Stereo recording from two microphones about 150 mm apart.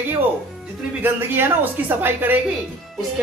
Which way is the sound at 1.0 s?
15° right (ahead or behind).